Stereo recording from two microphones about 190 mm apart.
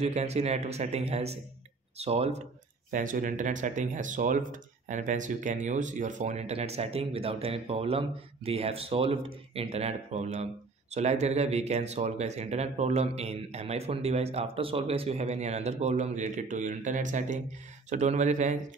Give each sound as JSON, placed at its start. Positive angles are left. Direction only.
{"t": 0.0, "sound": "speech", "side_deg": -35}
{"t": 2.9, "sound": "speech", "side_deg": -45}